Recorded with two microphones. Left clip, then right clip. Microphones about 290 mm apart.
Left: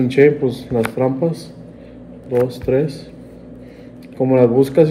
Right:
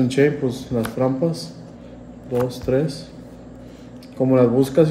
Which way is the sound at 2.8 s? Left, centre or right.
Right.